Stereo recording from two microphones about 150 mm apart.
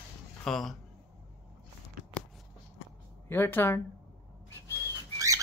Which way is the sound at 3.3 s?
15° left (ahead or behind).